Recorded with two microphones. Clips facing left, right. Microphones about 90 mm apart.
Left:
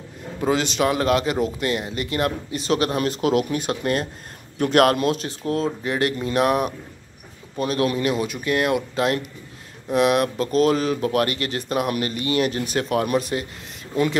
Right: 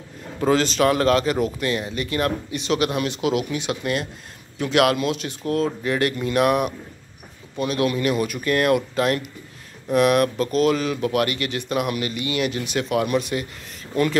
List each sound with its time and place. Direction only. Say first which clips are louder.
0.4 s speech: right 2 dB; 15° left (ahead or behind); by 13.5 s 35° left (ahead or behind)